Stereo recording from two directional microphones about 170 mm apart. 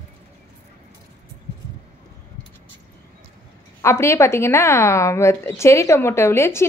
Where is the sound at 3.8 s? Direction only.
15° left (ahead or behind).